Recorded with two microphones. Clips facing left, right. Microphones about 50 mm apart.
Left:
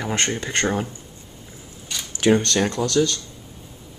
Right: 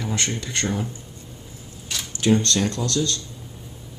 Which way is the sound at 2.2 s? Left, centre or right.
Left.